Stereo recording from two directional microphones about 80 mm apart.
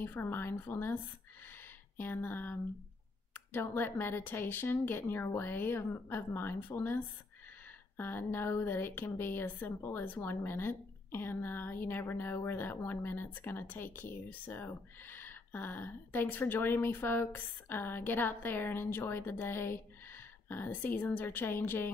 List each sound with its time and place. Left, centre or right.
0.0 s a woman's voice: left
2.0 s a woman's voice: left
8.0 s a woman's voice: left